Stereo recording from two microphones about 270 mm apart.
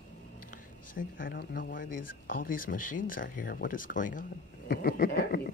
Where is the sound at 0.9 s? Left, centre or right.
Left.